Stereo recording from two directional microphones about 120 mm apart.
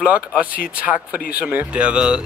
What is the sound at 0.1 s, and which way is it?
Speech, 10° right (ahead or behind).